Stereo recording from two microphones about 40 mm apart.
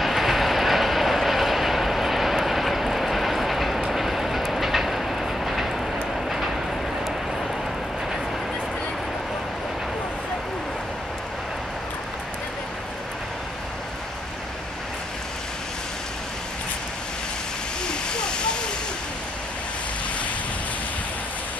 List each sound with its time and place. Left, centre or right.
0.0 s vehicle: centre
17.8 s waterfall: left